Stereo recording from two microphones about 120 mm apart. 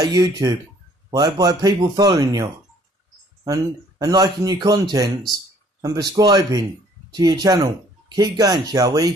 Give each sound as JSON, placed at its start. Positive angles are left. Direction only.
{"t": 0.0, "sound": "speech", "side_deg": -30}